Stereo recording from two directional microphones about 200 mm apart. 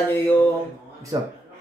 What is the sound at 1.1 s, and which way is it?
Speech, 20° right (ahead or behind).